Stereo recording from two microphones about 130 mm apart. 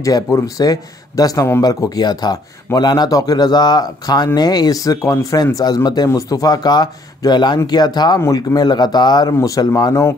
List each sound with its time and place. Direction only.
0.0 s speech: 25° left (ahead or behind)